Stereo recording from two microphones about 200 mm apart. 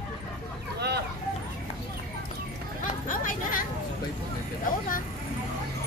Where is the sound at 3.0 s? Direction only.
45° left (ahead or behind).